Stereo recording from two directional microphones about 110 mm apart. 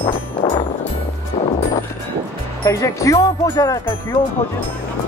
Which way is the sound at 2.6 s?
30° left (ahead or behind).